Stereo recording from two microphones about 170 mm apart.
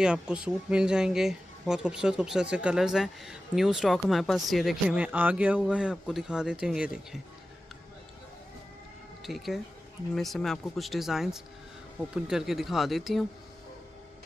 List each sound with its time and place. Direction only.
0.0 s speech: 5° right (ahead or behind)
9.2 s speech: centre (ahead or behind)